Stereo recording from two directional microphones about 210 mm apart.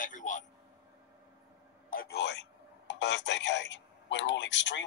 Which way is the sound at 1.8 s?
45° left (ahead or behind).